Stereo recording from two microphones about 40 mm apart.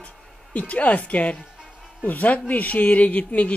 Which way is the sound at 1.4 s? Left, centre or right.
Right.